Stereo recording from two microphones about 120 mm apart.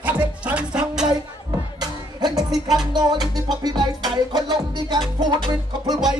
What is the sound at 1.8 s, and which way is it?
Music, 30° right (ahead or behind).